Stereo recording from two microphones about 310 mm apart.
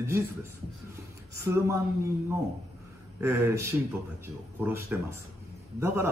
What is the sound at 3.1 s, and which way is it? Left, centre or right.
Speech, centre.